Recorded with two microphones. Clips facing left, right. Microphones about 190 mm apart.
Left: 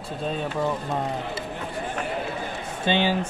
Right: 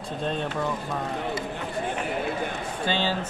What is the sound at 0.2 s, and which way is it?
Speech, 5° left (ahead or behind).